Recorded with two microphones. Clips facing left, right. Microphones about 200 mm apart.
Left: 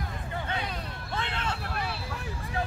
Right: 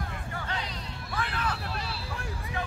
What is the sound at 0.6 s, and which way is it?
Hubbub, 55° left (ahead or behind).